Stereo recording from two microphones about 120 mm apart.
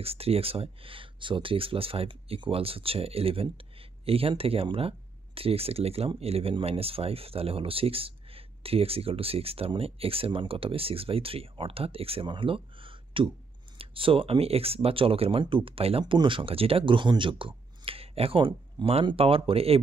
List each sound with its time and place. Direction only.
0.0 s speech: 55° right (ahead or behind)